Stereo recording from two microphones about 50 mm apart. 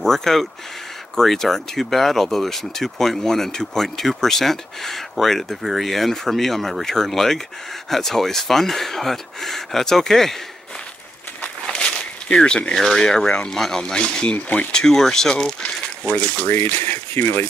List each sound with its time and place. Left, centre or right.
0.0 s speech: centre
11.4 s a sound: centre
12.7 s speech: centre
14.3 s speech: left
14.7 s speech: centre
16.4 s speech: left